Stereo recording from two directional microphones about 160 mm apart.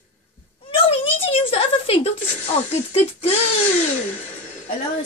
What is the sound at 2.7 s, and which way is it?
Speech, 40° left (ahead or behind).